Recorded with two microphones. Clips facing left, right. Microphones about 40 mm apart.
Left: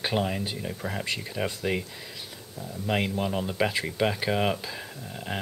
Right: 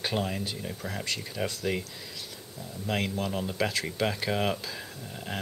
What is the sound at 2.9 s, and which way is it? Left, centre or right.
Speech, centre.